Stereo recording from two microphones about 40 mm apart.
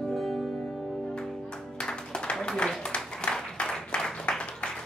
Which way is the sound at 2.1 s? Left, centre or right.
Left.